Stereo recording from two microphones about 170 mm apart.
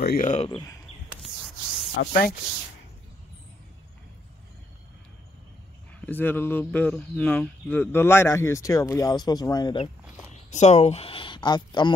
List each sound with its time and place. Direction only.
0.2 s speech: 45° left (ahead or behind)
1.2 s spray: centre (ahead or behind)
2.0 s speech: 65° left (ahead or behind)
5.9 s speech: 10° left (ahead or behind)
10.5 s speech: 40° left (ahead or behind); by 11.9 s 25° left (ahead or behind)